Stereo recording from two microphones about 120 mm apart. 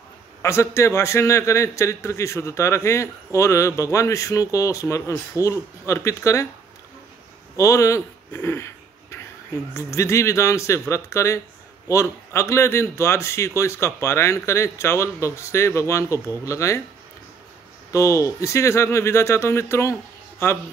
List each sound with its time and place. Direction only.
0.4 s speech: 25° left (ahead or behind)
7.5 s a sound: 25° left (ahead or behind)
9.8 s speech: 25° left (ahead or behind)
17.9 s speech: 25° left (ahead or behind)